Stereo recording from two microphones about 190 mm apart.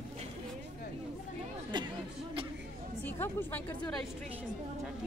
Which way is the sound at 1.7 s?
25° right (ahead or behind).